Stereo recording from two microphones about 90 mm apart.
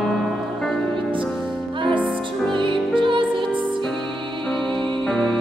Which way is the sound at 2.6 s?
65° right (ahead or behind).